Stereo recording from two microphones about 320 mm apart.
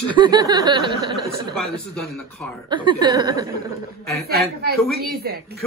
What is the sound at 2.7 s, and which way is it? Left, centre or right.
Speech, centre.